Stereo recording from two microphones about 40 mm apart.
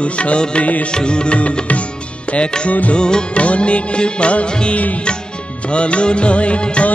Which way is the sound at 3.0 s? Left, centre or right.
Left.